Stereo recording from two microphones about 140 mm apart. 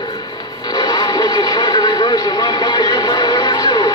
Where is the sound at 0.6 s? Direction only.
30° left (ahead or behind).